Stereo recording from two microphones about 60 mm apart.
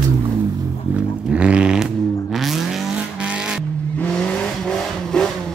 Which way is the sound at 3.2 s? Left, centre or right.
Centre.